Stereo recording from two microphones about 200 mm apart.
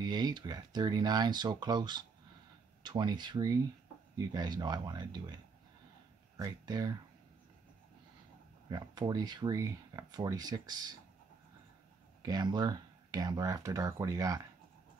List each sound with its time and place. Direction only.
0.0 s speech: 20° right (ahead or behind)
8.6 s speech: 20° right (ahead or behind)
12.2 s speech: 20° right (ahead or behind)